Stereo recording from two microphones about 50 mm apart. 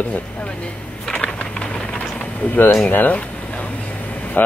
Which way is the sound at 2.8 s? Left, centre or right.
Left.